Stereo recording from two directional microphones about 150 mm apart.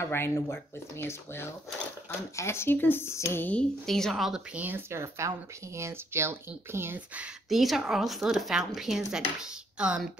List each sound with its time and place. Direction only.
0.0 s speech: 15° left (ahead or behind); by 4.6 s centre (ahead or behind)
4.6 s speech: 15° right (ahead or behind)
7.4 s speech: centre (ahead or behind)